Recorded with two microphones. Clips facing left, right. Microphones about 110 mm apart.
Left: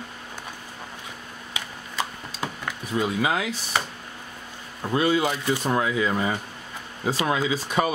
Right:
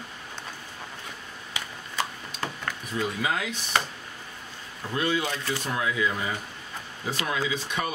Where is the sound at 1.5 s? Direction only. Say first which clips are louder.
Left 1 dB; 15° left (ahead or behind).